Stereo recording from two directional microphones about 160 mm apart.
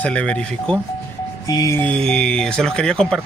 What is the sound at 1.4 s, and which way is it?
Speech, 20° left (ahead or behind).